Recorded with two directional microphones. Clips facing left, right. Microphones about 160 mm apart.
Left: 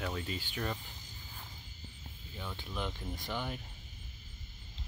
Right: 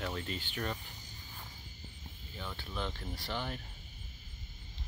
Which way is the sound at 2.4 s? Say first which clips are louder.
Even; 10° left (ahead or behind).